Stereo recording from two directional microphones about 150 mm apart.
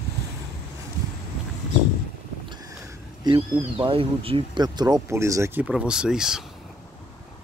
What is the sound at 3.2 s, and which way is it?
Speech, 35° right (ahead or behind).